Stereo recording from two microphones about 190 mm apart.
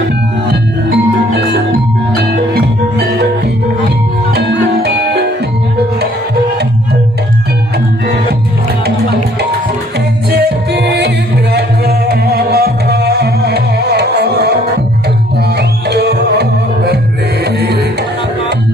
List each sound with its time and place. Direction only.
0.5 s music: 60° right (ahead or behind)
4.3 s music: 55° right (ahead or behind)
8.8 s music: 55° right (ahead or behind)